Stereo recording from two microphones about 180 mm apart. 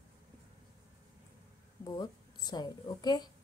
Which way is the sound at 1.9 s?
25° left (ahead or behind).